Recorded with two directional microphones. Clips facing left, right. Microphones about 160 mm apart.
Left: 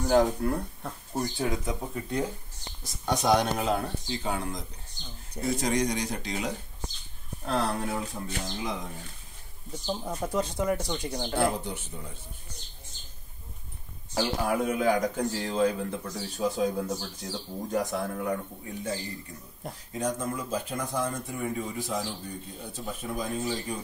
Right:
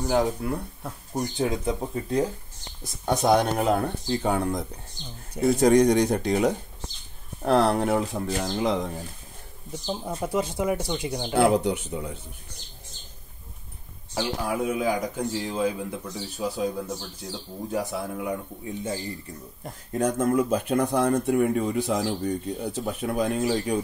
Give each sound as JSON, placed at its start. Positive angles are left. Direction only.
{"t": 0.1, "sound": "speech", "side_deg": -5}
{"t": 1.1, "sound": "speech", "side_deg": -25}
{"t": 3.3, "sound": "speech", "side_deg": -55}
{"t": 7.4, "sound": "speech", "side_deg": -70}
{"t": 9.8, "sound": "a man's voice", "side_deg": -10}
{"t": 11.3, "sound": "speech", "side_deg": -75}
{"t": 14.5, "sound": "a man's voice", "side_deg": -5}
{"t": 18.8, "sound": "speech", "side_deg": -25}
{"t": 19.9, "sound": "speech", "side_deg": -60}